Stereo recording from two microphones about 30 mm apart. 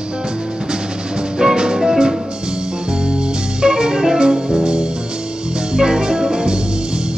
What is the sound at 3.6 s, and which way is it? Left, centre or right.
Organ, right.